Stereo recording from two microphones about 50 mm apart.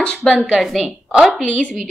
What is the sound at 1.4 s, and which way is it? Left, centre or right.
Speech, left.